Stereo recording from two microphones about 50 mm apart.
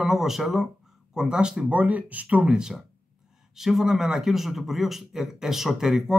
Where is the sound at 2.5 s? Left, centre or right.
Centre.